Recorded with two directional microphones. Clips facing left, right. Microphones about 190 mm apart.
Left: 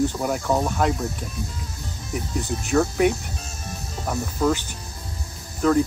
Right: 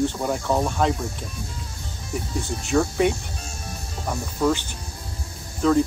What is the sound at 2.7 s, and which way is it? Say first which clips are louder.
Speech: left 1 dB; centre (ahead or behind).